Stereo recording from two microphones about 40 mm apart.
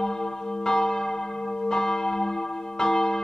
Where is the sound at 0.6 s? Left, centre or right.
Centre.